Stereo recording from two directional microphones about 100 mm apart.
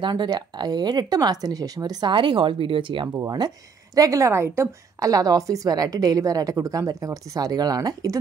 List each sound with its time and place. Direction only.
0.0 s speech: 45° right (ahead or behind)
3.3 s a woman's voice: 45° right (ahead or behind)